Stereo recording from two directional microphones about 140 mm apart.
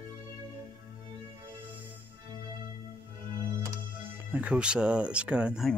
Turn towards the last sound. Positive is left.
turn(degrees=-5)  # may be behind; listen again after turning